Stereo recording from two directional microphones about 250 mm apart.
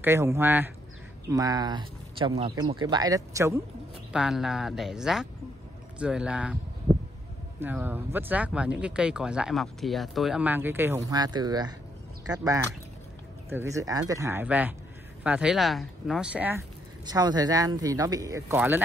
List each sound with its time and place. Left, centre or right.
0.0 s speech: centre
7.6 s speech: centre